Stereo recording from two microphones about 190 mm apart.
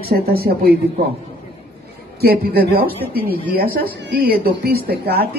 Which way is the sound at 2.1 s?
55° right (ahead or behind).